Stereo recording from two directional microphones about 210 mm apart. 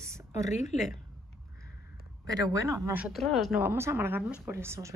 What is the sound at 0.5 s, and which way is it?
Speech, 35° left (ahead or behind).